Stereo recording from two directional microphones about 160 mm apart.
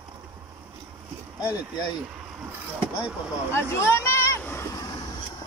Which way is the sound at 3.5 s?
15° left (ahead or behind).